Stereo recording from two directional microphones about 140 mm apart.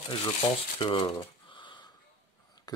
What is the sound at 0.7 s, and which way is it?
Speech, 35° left (ahead or behind).